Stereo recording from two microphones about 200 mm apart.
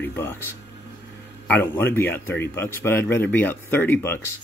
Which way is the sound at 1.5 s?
10° left (ahead or behind).